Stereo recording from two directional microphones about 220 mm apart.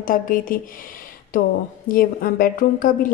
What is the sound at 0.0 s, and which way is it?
A woman's voice, 40° left (ahead or behind).